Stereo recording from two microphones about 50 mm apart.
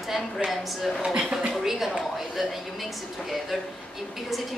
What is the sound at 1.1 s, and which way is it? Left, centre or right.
Speech, centre.